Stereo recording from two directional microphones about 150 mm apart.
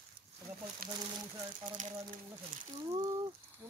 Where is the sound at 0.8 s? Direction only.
75° right (ahead or behind).